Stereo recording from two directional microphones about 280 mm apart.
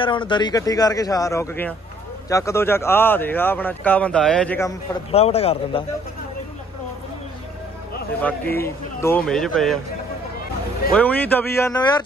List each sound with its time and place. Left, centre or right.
0.0 s speech: centre
5.1 s speech: left
8.2 s speech: centre
10.9 s speech: centre